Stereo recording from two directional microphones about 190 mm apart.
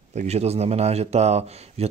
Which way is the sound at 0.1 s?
35° right (ahead or behind).